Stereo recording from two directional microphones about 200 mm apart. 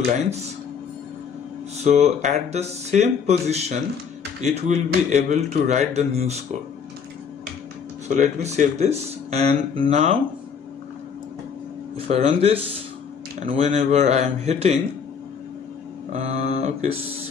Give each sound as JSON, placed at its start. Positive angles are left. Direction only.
{"t": 1.8, "sound": "speech", "side_deg": -35}
{"t": 8.1, "sound": "speech", "side_deg": -35}
{"t": 12.1, "sound": "speech", "side_deg": -35}
{"t": 16.1, "sound": "speech", "side_deg": -35}